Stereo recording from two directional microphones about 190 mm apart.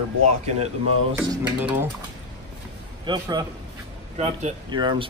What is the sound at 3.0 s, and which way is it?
Speech, 25° right (ahead or behind).